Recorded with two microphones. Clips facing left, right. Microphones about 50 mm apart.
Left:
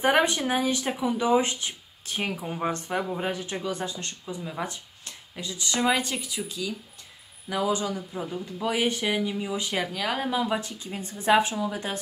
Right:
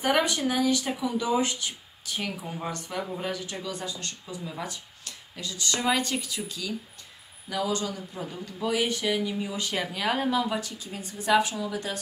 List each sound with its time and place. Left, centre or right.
0.0 s speech: left
8.6 s speech: left
9.9 s speech: centre
10.3 s speech: left